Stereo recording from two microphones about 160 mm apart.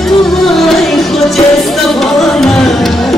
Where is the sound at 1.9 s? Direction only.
Centre (ahead or behind).